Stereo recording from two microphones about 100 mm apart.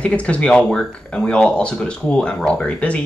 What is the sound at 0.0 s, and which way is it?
Speech, 10° left (ahead or behind).